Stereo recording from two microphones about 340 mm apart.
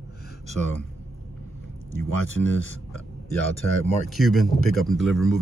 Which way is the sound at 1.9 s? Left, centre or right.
Left.